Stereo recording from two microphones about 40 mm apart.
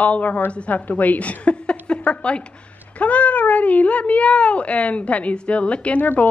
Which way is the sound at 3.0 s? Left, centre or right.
Left.